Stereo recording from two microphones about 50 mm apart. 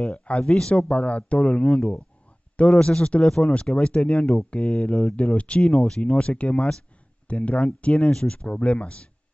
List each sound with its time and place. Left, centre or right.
0.0 s speech: left